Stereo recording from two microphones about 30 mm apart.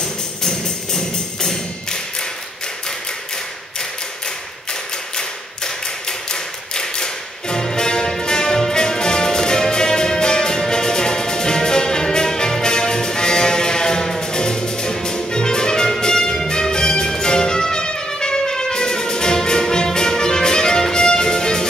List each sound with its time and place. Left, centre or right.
0.0 s music: left
5.1 s tap: left
14.2 s music: left